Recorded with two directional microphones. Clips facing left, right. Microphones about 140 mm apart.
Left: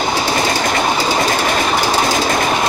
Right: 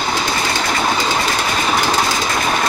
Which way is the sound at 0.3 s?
30° left (ahead or behind).